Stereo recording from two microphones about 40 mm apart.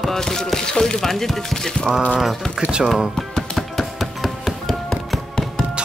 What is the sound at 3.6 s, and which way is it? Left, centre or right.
Music, centre.